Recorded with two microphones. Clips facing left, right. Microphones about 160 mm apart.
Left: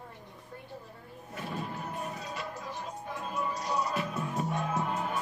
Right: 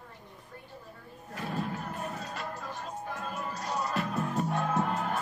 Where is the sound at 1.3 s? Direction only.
65° right (ahead or behind).